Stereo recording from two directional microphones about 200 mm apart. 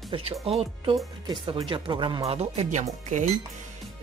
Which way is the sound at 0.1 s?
30° right (ahead or behind).